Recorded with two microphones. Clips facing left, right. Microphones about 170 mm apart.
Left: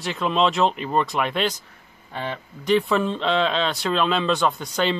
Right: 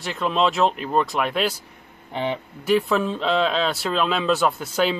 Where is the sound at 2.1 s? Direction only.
20° right (ahead or behind).